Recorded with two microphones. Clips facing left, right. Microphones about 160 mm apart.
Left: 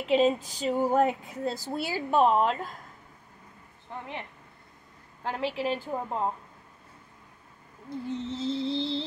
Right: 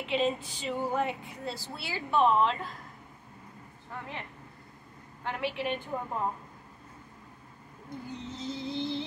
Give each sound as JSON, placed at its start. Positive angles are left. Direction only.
{"t": 0.1, "sound": "speech", "side_deg": 40}
{"t": 5.2, "sound": "a woman's voice", "side_deg": 35}
{"t": 8.1, "sound": "music", "side_deg": 30}